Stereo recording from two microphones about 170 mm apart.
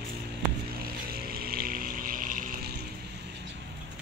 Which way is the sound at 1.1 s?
65° right (ahead or behind).